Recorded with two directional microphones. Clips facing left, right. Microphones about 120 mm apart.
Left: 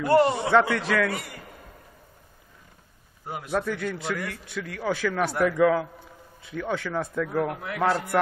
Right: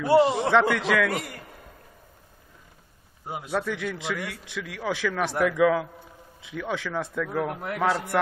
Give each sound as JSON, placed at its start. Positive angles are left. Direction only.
{"t": 0.0, "sound": "a man's voice", "side_deg": 0}
{"t": 3.3, "sound": "a man's voice", "side_deg": -15}
{"t": 3.6, "sound": "a man's voice", "side_deg": 0}